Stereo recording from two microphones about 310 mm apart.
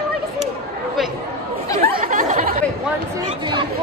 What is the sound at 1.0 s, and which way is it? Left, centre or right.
Speech, centre.